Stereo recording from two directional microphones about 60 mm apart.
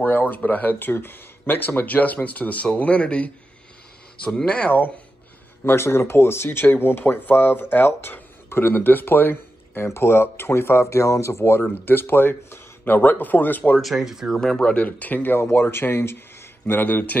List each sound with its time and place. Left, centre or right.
0.0 s speech: left
4.5 s speech: left
5.7 s speech: left
11.8 s speech: left
13.7 s speech: centre
14.4 s speech: centre; by 15.3 s left
15.3 s speech: left